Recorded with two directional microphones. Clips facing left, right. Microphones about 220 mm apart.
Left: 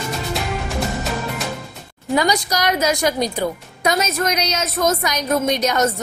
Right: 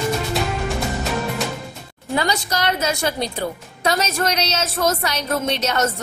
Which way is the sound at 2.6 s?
15° left (ahead or behind).